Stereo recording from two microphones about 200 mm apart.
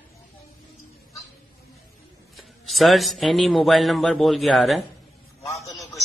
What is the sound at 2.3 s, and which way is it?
A man's voice, centre (ahead or behind).